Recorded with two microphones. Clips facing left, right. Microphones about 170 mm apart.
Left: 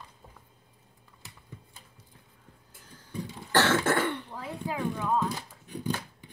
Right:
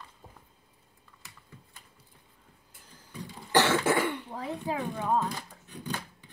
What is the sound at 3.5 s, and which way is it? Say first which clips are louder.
Cough: even; 10° right (ahead or behind).